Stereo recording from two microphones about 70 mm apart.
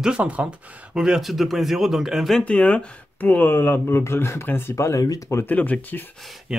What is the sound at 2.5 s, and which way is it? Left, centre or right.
Speech, centre.